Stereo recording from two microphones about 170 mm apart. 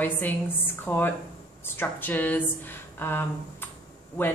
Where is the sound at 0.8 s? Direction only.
10° left (ahead or behind).